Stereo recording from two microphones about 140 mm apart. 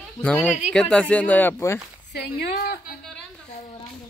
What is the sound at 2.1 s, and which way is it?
Speech, 90° left.